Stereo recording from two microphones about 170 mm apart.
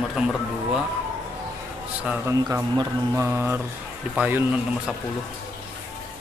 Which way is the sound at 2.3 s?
20° right (ahead or behind).